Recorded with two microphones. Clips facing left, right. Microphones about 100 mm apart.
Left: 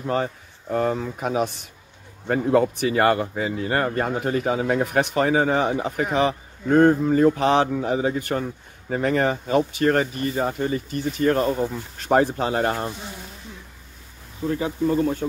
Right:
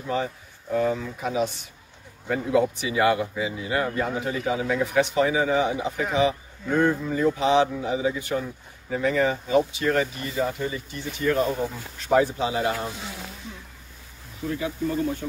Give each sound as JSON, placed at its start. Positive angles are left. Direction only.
{"t": 0.1, "sound": "speech", "side_deg": 50}
{"t": 14.6, "sound": "speech", "side_deg": 40}